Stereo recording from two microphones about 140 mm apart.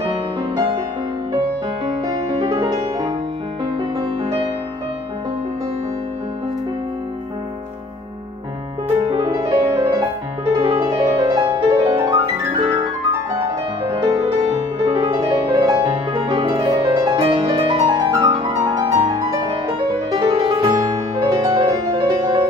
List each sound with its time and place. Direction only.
2.0 s music: 25° right (ahead or behind)
9.1 s music: 25° right (ahead or behind)
14.9 s music: 30° right (ahead or behind)
16.1 s music: 35° right (ahead or behind)
18.1 s music: 25° right (ahead or behind)
18.9 s music: 45° right (ahead or behind)
20.2 s music: 30° right (ahead or behind)